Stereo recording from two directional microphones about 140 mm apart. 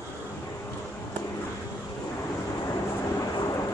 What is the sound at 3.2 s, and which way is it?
Vehicle, 25° left (ahead or behind).